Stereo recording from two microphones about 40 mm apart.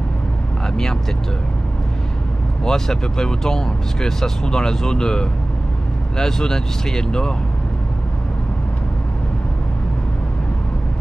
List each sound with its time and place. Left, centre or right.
2.6 s speech: centre